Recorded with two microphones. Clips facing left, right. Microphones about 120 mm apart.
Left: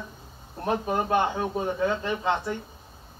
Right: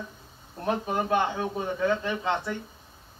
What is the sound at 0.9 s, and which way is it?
Speech, 25° left (ahead or behind).